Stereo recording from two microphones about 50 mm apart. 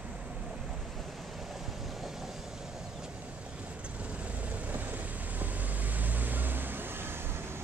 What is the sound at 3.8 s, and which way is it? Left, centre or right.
Vehicle, right.